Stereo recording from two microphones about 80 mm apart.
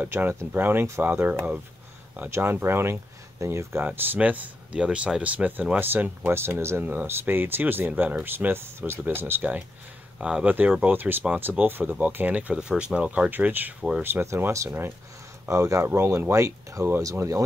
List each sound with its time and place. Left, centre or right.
0.0 s speech: right
10.1 s speech: centre
10.5 s speech: right
14.2 s speech: right